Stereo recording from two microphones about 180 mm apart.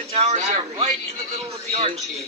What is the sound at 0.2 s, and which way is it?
A man's voice, 35° right (ahead or behind).